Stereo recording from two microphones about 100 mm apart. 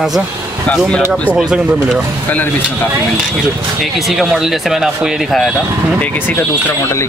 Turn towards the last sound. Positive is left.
turn(degrees=20)  # may be behind; listen again after turning